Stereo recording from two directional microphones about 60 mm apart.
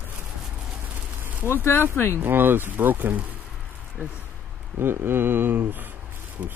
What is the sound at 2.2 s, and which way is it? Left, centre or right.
Speech, right.